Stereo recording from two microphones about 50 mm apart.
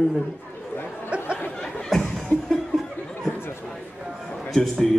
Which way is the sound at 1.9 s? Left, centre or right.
Centre.